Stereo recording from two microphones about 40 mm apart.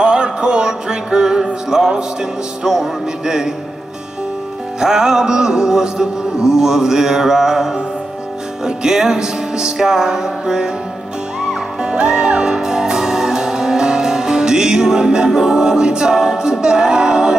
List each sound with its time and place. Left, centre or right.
0.0 s music: right
4.7 s music: centre
11.8 s music: centre